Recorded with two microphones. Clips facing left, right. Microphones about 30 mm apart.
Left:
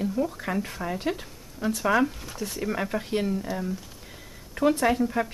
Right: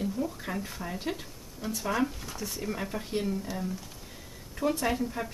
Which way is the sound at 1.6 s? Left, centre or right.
Left.